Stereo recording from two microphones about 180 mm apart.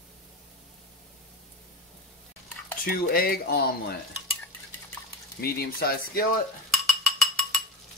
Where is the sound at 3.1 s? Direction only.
55° left (ahead or behind).